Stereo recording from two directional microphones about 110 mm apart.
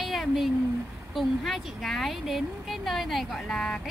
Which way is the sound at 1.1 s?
Centre (ahead or behind).